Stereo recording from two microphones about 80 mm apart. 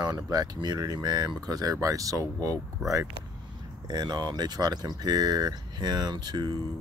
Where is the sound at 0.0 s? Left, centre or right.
Right.